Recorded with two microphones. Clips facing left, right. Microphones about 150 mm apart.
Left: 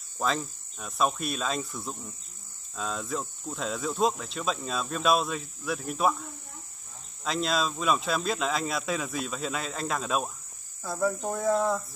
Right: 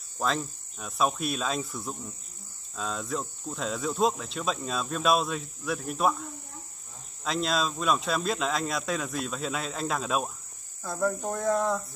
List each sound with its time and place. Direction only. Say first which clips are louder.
0.2 s cricket: even; centre (ahead or behind)